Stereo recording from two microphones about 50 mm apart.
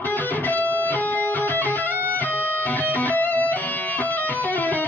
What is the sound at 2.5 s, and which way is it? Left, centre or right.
Music, left.